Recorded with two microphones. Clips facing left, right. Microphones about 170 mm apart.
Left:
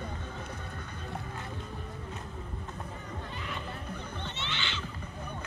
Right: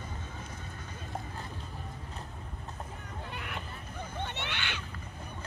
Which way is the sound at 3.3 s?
65° right (ahead or behind).